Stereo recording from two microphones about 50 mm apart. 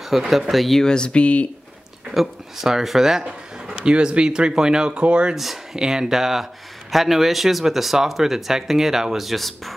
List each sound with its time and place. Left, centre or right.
0.3 s speech: centre
0.8 s speech: centre
2.0 s speech: centre
3.8 s speech: centre
5.3 s speech: centre